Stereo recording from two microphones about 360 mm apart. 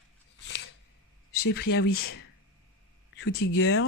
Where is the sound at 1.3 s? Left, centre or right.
Left.